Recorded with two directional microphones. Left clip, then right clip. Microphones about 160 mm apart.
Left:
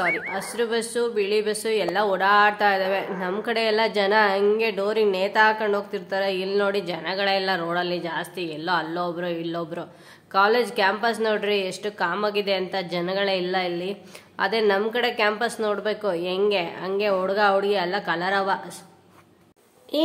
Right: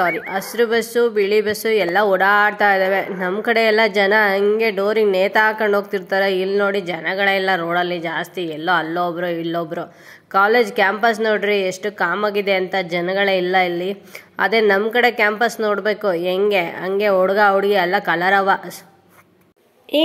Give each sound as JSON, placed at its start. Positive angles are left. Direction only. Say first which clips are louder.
{"t": 0.3, "sound": "a woman's voice", "louder": "right 7 dB", "side_deg": -30}